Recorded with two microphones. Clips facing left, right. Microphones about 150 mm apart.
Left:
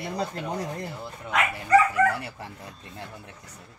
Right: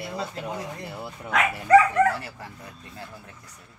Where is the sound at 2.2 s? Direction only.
25° left (ahead or behind).